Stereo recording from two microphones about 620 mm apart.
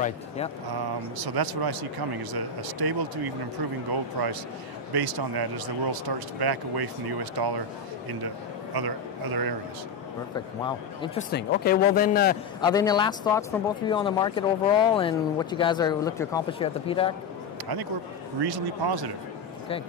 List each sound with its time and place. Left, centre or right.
1.1 s speech: right
4.2 s speech: right
8.7 s speech: right
10.3 s speech: centre
18.4 s speech: right